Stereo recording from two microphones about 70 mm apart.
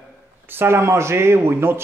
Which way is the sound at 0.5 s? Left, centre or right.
Right.